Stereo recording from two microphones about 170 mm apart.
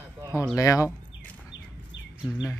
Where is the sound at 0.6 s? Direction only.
20° left (ahead or behind).